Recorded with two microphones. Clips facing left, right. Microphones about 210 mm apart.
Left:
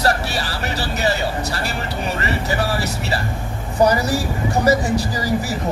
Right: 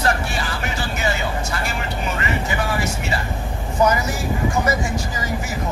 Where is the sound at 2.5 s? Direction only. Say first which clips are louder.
Left 2 dB; 35° left (ahead or behind).